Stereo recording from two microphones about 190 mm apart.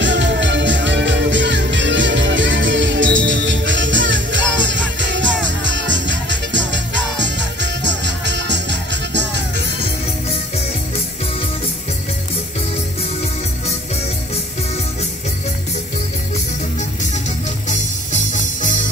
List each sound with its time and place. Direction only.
0.0 s music: 70° right (ahead or behind)
17.6 s music: 40° left (ahead or behind)